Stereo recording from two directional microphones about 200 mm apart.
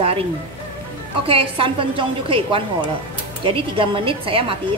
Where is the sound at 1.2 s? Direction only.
25° right (ahead or behind).